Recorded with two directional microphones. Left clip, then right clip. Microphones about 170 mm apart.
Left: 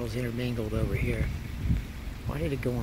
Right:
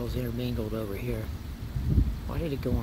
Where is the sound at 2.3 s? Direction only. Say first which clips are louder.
Left 2 dB; centre (ahead or behind).